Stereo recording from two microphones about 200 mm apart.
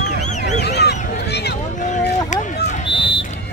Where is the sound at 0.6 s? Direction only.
55° left (ahead or behind).